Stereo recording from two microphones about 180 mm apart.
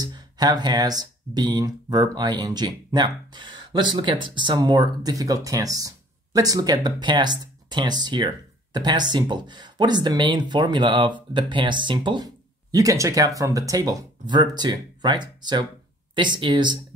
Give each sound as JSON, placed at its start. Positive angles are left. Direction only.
{"t": 0.0, "sound": "speech", "side_deg": -20}